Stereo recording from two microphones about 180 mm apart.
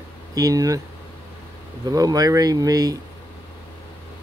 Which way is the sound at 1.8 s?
20° right (ahead or behind).